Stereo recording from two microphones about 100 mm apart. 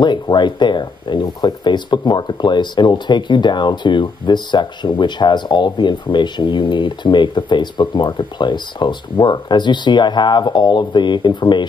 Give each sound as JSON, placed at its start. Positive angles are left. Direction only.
{"t": 0.0, "sound": "speech", "side_deg": 50}